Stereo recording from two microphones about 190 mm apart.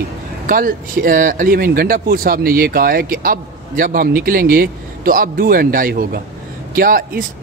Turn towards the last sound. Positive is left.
turn(degrees=-50)  # may be behind; listen again after turning